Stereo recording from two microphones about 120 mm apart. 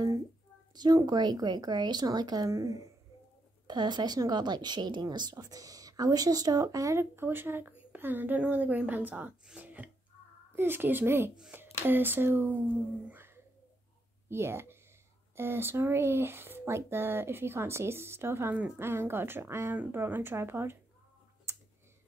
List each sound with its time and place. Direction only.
0.7 s speech: 35° right (ahead or behind)